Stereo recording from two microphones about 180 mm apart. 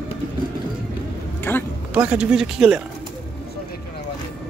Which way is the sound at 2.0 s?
5° right (ahead or behind).